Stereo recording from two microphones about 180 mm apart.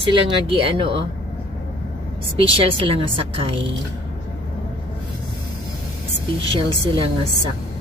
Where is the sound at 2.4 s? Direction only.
30° right (ahead or behind).